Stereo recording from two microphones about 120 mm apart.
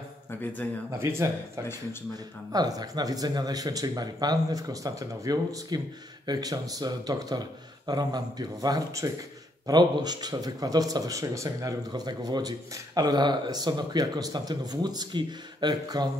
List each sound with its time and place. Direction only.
0.3 s a man's voice: 15° left (ahead or behind)
0.9 s speech: 20° right (ahead or behind)
2.5 s speech: 35° right (ahead or behind)